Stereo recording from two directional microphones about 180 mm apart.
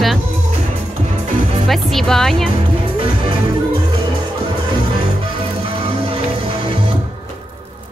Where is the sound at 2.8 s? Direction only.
30° right (ahead or behind).